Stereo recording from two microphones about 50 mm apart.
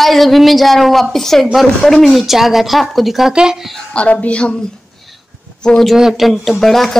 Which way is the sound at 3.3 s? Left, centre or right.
Centre.